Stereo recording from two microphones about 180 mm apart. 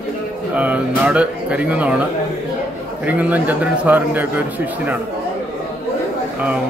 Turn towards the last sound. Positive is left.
turn(degrees=-10)  # may be behind; listen again after turning